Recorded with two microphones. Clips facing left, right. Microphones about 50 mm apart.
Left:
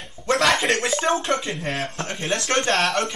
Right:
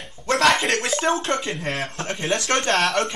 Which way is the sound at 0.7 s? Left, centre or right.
Centre.